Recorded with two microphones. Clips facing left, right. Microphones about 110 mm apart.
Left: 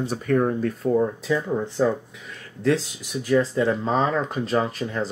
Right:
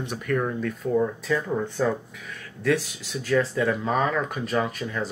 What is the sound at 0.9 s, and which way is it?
Speech, 15° left (ahead or behind).